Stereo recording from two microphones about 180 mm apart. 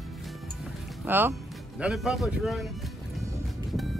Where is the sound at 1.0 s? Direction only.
10° right (ahead or behind).